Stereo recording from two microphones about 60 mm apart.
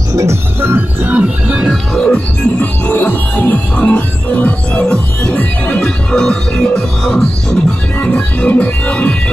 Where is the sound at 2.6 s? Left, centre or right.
Left.